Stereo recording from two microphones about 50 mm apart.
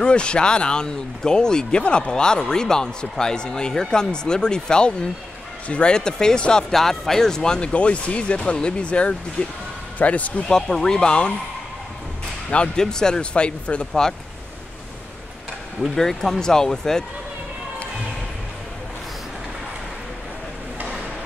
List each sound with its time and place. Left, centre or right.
0.0 s speech: centre
10.7 s speech: centre
12.4 s speech: centre
15.8 s speech: centre